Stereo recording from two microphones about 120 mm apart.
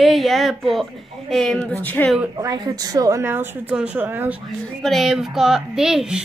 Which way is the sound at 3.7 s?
10° right (ahead or behind).